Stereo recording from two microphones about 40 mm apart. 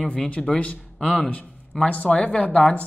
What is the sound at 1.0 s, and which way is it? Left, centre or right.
Speech, left.